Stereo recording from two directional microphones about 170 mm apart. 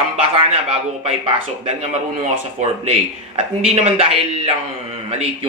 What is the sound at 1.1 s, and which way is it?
Speech, 40° right (ahead or behind).